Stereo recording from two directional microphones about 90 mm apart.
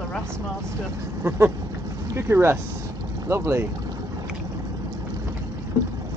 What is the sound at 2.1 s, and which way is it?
Speech, 30° right (ahead or behind).